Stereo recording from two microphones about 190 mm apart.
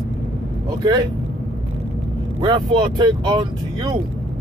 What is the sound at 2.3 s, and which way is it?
Speech, 25° right (ahead or behind).